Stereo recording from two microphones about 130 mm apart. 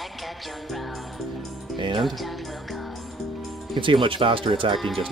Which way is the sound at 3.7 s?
40° right (ahead or behind).